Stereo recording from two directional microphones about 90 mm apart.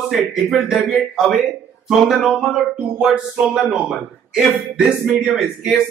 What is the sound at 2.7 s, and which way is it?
Speech, 15° right (ahead or behind).